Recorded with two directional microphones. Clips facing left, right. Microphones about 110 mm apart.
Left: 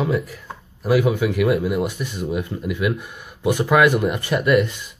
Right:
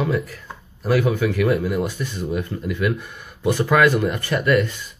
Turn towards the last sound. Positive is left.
turn(degrees=15)  # may be behind; listen again after turning